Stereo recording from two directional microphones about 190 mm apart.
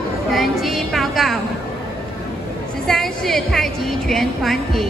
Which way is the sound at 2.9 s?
Centre (ahead or behind).